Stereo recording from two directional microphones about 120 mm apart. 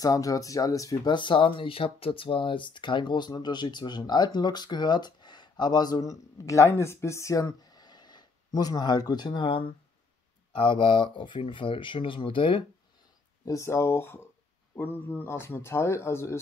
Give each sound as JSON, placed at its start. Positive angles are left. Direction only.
{"t": 0.0, "sound": "speech", "side_deg": 30}
{"t": 1.1, "sound": "speech", "side_deg": 40}
{"t": 13.5, "sound": "speech", "side_deg": 25}